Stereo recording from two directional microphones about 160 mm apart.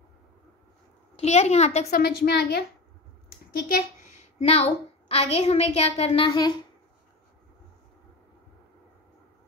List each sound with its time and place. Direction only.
1.1 s a child's voice: 45° left (ahead or behind)
1.9 s a woman's voice: 75° left (ahead or behind)
4.4 s a woman's voice: 40° left (ahead or behind)